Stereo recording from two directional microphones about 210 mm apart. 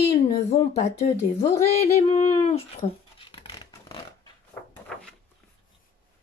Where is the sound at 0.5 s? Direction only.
30° left (ahead or behind).